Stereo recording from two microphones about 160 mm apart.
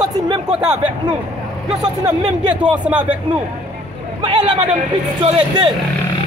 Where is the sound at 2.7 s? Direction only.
10° right (ahead or behind).